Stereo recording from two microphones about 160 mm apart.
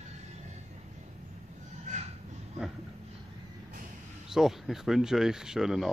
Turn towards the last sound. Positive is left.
turn(degrees=0)  # may be behind; listen again after turning